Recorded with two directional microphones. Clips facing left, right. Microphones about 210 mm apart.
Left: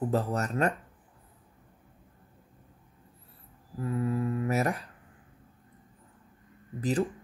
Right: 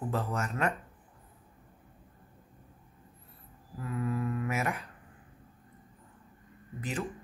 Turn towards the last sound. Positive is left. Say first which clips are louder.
# left 8 dB
turn(degrees=35)  # may be behind; listen again after turning